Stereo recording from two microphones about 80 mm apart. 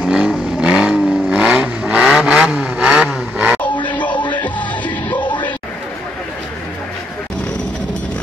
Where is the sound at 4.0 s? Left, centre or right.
Left.